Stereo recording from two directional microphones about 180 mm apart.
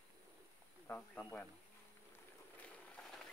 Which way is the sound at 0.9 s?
10° left (ahead or behind).